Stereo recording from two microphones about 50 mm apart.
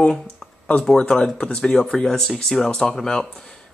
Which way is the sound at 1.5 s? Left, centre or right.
Centre.